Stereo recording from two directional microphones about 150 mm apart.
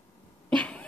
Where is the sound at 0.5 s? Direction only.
5° left (ahead or behind).